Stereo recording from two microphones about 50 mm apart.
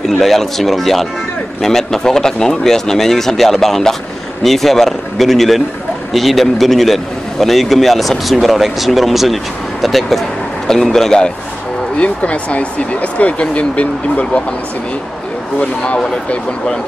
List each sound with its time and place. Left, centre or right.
0.2 s a man's voice: centre
12.0 s speech: left
15.8 s speech: left